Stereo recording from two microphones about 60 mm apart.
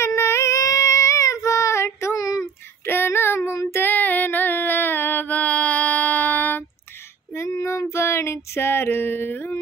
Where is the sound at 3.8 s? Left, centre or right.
Left.